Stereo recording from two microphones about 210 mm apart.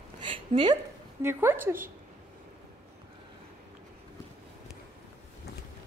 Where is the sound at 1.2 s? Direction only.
10° right (ahead or behind).